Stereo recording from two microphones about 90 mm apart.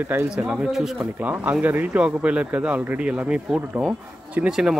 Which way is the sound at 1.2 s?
20° right (ahead or behind).